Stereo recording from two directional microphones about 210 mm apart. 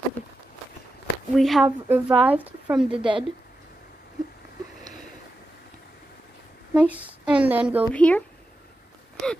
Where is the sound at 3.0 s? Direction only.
25° right (ahead or behind).